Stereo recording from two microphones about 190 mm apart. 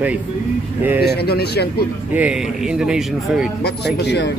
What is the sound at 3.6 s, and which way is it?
Speech, 60° left (ahead or behind).